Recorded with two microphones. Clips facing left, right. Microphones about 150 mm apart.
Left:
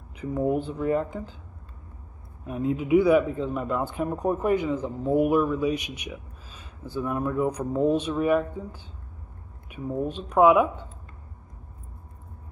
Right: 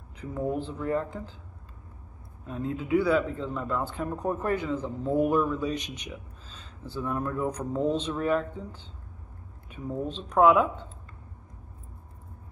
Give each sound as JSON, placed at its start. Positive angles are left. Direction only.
{"t": 0.2, "sound": "speech", "side_deg": 15}
{"t": 2.4, "sound": "speech", "side_deg": 15}